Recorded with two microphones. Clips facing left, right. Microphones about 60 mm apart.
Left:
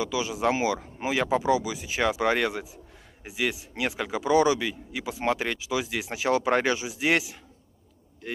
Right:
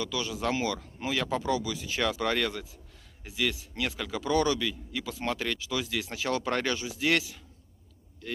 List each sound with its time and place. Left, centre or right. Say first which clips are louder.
0.0 s speech: left 5 dB; centre